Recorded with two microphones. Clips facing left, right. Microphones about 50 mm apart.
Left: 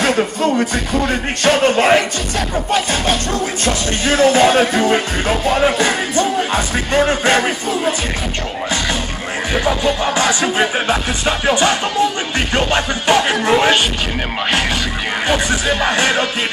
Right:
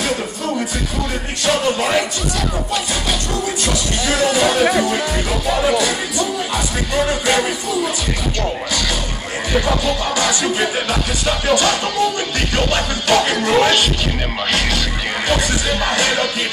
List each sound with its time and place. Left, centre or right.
0.0 s music: left
2.7 s speech: left
9.5 s music: left
15.2 s music: left